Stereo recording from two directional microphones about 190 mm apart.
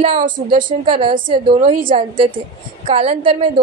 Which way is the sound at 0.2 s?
45° right (ahead or behind).